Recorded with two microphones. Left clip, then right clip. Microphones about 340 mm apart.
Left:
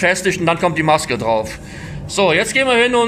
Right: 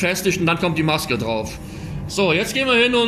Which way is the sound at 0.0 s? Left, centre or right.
Left.